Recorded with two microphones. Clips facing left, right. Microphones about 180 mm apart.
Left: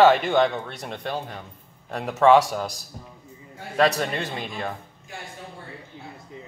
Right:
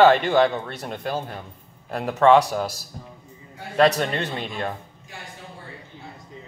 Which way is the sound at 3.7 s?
Centre (ahead or behind).